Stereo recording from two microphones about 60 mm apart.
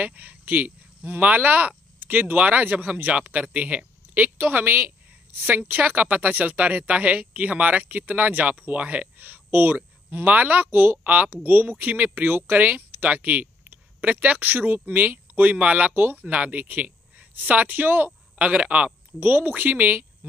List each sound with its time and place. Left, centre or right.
0.0 s speech: right
2.9 s speech: right
15.9 s speech: right
19.1 s speech: right